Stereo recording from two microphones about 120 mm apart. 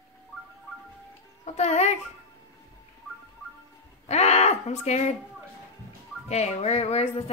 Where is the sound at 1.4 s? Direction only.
65° left (ahead or behind).